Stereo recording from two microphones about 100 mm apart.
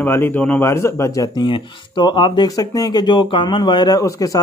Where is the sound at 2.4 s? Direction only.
35° left (ahead or behind).